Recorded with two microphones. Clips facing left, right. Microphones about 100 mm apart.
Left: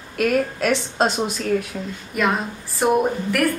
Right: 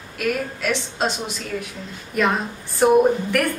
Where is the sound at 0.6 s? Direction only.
40° left (ahead or behind).